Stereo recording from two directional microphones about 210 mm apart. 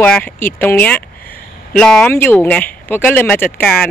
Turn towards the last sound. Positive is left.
turn(degrees=5)  # may be behind; listen again after turning